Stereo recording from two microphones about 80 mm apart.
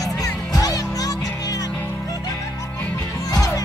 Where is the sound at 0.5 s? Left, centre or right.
Left.